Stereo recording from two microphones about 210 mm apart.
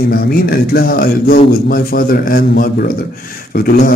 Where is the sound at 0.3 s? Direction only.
45° left (ahead or behind).